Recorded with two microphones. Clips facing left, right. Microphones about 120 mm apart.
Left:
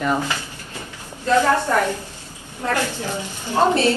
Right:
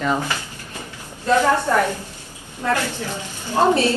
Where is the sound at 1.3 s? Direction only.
15° right (ahead or behind).